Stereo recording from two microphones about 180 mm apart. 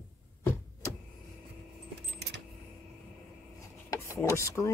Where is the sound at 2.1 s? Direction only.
70° right (ahead or behind).